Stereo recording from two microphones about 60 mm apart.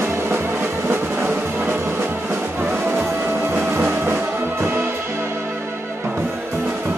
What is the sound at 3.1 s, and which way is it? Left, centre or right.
Music, right.